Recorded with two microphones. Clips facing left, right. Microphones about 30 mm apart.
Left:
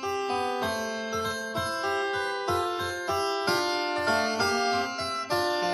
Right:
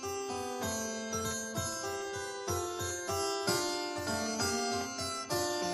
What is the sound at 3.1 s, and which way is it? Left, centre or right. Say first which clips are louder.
Music: left 6 dB; left.